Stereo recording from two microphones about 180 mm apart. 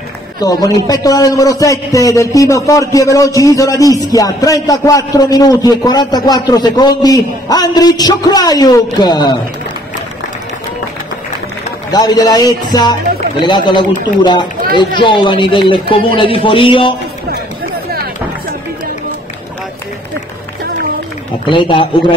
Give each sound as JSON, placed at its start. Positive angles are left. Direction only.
{"t": 0.4, "sound": "a man's voice", "side_deg": 20}
{"t": 11.9, "sound": "a man's voice", "side_deg": 20}
{"t": 21.5, "sound": "a man's voice", "side_deg": 30}